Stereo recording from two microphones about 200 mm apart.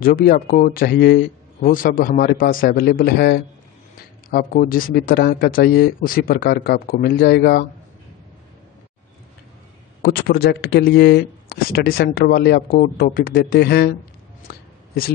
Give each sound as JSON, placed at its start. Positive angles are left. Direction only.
{"t": 0.0, "sound": "speech", "side_deg": 45}
{"t": 10.0, "sound": "speech", "side_deg": 50}
{"t": 14.5, "sound": "a sound", "side_deg": 55}